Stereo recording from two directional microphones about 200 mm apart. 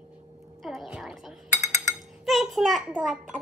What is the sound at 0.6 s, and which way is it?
Music, centre (ahead or behind).